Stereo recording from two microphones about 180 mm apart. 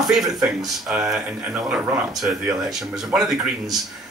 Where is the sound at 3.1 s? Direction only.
Centre (ahead or behind).